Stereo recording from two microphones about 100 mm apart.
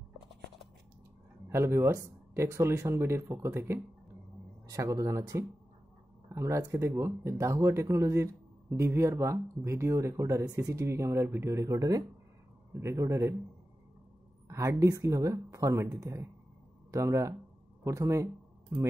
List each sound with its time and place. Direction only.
1.5 s speech: 25° right (ahead or behind)
14.5 s speech: 30° right (ahead or behind)